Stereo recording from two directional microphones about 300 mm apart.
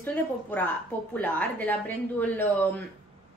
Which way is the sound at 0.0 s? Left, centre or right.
Centre.